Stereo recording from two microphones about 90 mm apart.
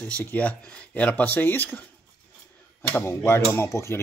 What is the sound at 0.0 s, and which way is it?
Speech, 15° left (ahead or behind).